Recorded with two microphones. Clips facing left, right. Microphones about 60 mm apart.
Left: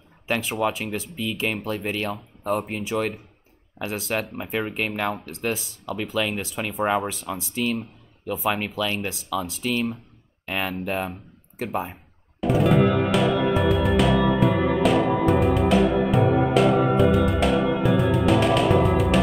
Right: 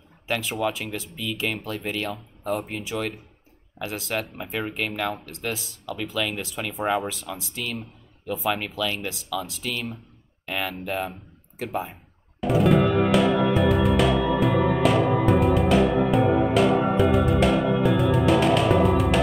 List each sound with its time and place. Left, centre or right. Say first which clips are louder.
0.5 s speech: left 2 dB; centre
1.9 s speech: left 2 dB; left
4.1 s speech: left 3 dB; centre
12.4 s music: even; centre